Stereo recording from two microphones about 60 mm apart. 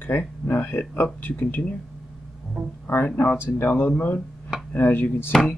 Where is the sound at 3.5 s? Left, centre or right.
Left.